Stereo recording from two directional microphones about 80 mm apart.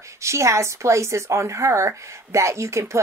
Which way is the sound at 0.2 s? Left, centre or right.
Right.